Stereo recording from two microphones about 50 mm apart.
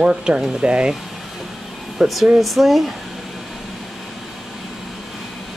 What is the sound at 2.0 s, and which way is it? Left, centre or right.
Speech, centre.